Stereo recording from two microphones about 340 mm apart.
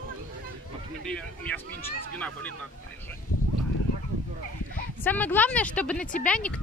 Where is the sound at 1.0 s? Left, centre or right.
Centre.